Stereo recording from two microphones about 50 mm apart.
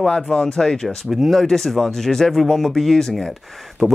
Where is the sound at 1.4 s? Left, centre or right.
Centre.